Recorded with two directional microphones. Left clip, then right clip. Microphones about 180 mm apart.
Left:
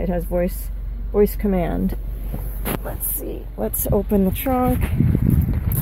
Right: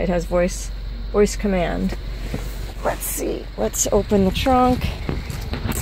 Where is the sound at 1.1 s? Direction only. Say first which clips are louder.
Even; 15° left (ahead or behind).